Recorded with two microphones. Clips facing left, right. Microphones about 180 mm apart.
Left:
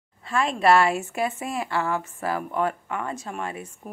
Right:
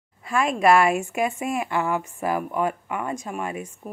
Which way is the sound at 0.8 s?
15° right (ahead or behind).